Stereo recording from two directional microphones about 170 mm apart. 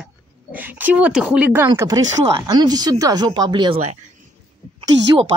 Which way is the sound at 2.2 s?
30° right (ahead or behind).